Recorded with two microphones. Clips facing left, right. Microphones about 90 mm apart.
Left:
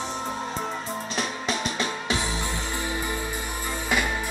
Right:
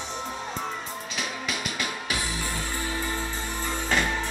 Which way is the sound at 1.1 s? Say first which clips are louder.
Left 3 dB; 30° left (ahead or behind).